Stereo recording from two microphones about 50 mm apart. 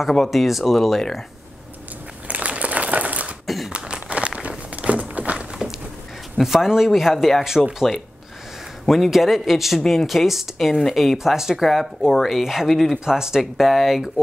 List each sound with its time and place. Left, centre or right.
0.3 s speech: centre
2.2 s crumpling: right
3.4 s a sound: centre
3.7 s a sound: right
6.4 s speech: centre
7.8 s speech: centre
13.0 s speech: centre